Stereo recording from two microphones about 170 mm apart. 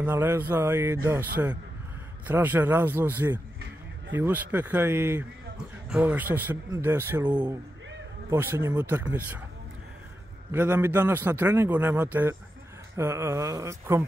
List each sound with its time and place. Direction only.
0.0 s a man's voice: 15° right (ahead or behind)
8.3 s a man's voice: 15° right (ahead or behind)
10.5 s a man's voice: 10° right (ahead or behind)